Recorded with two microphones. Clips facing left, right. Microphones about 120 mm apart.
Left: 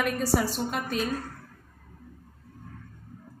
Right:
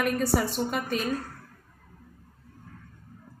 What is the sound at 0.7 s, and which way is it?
Speech, centre (ahead or behind).